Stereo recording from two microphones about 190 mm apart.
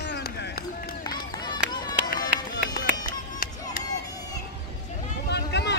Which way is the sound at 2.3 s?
65° right (ahead or behind).